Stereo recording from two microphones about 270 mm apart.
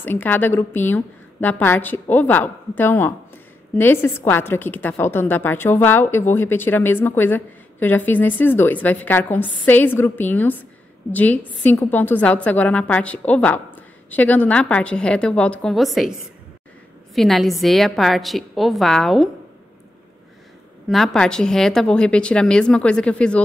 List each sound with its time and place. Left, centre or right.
0.0 s a woman's voice: centre
17.1 s a woman's voice: centre
20.9 s a woman's voice: centre